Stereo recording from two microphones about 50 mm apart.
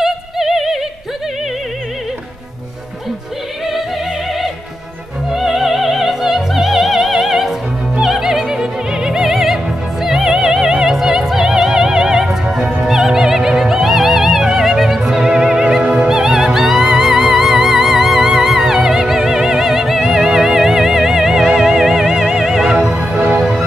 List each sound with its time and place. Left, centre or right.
0.0 s music: centre
5.3 s opera: centre
12.3 s music: centre
22.9 s music: right
23.3 s music: centre